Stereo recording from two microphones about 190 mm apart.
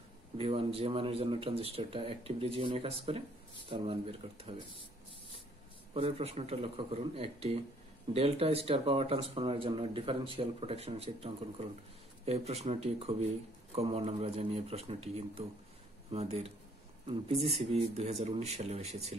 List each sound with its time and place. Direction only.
0.4 s speech: 30° right (ahead or behind)
5.9 s speech: 30° right (ahead or behind)